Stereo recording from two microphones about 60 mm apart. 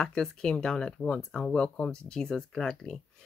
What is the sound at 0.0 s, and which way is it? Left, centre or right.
Speech, centre.